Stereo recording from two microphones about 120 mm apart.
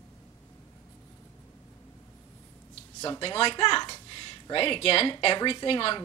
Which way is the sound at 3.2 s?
50° left (ahead or behind).